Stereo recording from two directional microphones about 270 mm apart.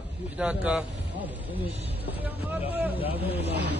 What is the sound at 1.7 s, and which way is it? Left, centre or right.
Speech, right.